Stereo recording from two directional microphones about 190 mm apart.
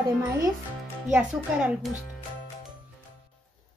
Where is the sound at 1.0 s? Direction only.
5° right (ahead or behind).